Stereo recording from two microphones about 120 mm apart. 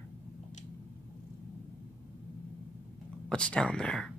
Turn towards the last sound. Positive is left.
turn(degrees=5)  # may be behind; listen again after turning